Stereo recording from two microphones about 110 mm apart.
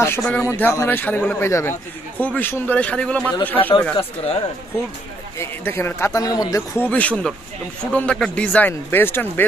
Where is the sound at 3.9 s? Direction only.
70° left (ahead or behind).